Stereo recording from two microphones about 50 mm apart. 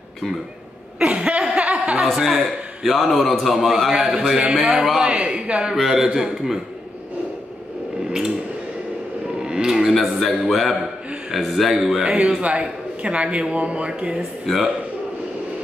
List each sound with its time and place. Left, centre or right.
0.9 s a sound: centre
2.1 s a man's voice: centre
5.8 s a man's voice: centre
9.4 s a man's voice: centre
12.0 s a man's voice: centre
14.4 s a man's voice: centre